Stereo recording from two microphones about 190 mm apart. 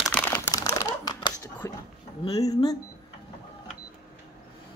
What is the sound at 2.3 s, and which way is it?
Speech, 20° left (ahead or behind).